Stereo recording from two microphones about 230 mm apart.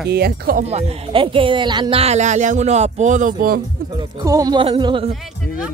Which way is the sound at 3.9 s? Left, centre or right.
Centre.